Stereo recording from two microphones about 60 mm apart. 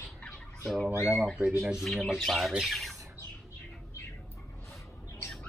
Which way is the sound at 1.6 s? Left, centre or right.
Centre.